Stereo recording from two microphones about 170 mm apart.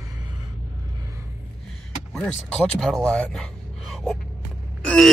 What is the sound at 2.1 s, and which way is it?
Speech, 5° left (ahead or behind).